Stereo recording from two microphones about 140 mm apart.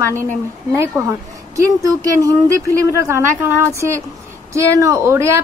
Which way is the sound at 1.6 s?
25° right (ahead or behind).